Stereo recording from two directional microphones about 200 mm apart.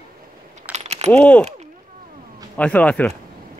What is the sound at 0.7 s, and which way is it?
Keys jangling, 35° right (ahead or behind).